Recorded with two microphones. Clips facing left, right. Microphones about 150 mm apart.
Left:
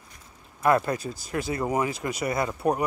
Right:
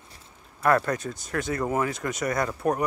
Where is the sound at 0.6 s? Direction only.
10° left (ahead or behind).